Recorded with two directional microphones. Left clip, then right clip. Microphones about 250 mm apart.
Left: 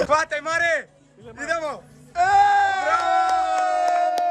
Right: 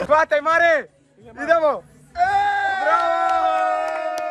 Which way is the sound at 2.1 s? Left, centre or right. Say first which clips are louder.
Left 2 dB; left.